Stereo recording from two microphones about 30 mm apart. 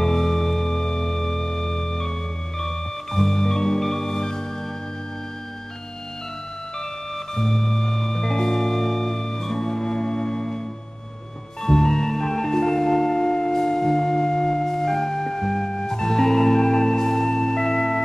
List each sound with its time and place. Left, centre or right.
0.0 s music: centre
7.3 s music: centre
11.6 s music: centre